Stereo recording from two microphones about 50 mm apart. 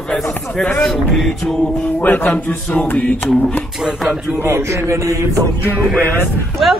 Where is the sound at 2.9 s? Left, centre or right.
Left.